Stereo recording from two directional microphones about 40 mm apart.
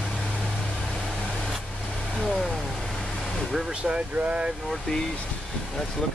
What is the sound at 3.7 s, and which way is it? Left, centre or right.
Speech, right.